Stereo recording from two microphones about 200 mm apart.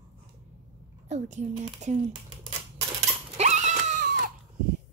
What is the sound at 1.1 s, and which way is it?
Speech, 35° right (ahead or behind).